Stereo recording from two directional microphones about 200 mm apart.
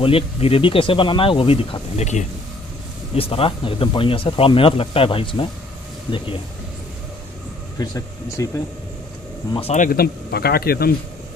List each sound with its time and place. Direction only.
0.0 s speech: 30° left (ahead or behind)
7.8 s speech: 15° left (ahead or behind)
9.5 s speech: 30° left (ahead or behind)
9.8 s speech: 50° left (ahead or behind)